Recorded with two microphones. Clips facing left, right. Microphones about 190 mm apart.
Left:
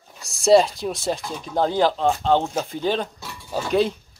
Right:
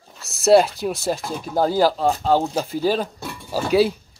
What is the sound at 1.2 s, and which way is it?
Speech, 50° right (ahead or behind).